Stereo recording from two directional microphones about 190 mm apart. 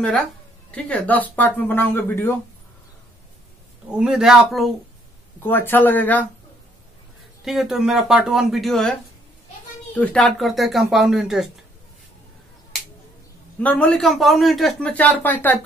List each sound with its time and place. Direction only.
0.7 s speech: 5° left (ahead or behind)
3.9 s a man's voice: 5° right (ahead or behind)
7.4 s a man's voice: centre (ahead or behind)
9.9 s a man's voice: 5° left (ahead or behind)
13.6 s a man's voice: 5° left (ahead or behind)